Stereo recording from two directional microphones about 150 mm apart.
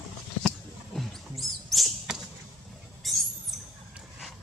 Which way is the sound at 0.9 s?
Centre (ahead or behind).